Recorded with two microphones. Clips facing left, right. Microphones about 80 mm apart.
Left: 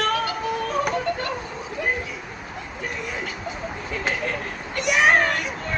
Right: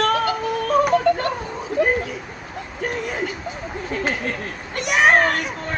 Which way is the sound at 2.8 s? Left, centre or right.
Right.